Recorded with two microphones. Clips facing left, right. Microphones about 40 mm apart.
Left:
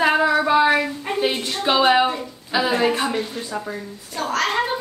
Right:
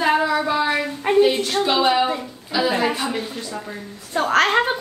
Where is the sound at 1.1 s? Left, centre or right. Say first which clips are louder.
Right 9 dB; right.